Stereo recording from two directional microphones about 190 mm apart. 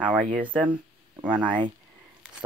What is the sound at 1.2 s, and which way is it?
Speech, 5° right (ahead or behind).